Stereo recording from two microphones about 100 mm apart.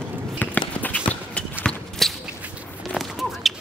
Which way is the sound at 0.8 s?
15° left (ahead or behind).